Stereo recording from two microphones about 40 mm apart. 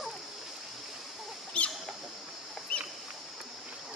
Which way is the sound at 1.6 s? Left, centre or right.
Left.